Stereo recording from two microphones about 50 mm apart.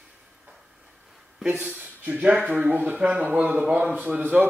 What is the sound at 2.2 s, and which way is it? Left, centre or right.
Speech, centre.